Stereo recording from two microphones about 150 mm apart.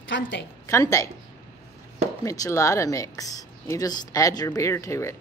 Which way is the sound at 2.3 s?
20° left (ahead or behind).